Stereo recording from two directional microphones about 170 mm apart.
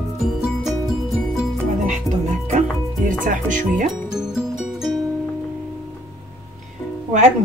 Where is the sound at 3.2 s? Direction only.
50° right (ahead or behind).